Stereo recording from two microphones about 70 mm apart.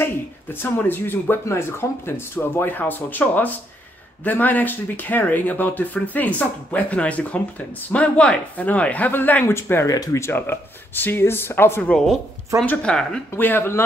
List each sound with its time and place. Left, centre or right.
0.0 s speech: left
9.8 s speech: left
10.1 s speech: left
11.8 s speech: centre
13.4 s speech: left